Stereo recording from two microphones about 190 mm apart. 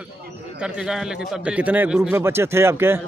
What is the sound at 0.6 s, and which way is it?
A man's voice, 5° right (ahead or behind).